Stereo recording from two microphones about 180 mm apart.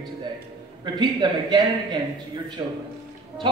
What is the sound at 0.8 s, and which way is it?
Speech, 25° right (ahead or behind).